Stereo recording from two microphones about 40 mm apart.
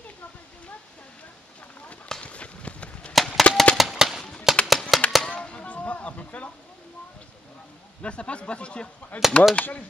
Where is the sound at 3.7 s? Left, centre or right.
Centre.